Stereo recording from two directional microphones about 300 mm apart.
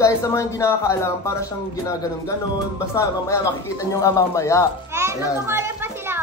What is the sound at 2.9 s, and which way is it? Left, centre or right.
A child's voice, centre.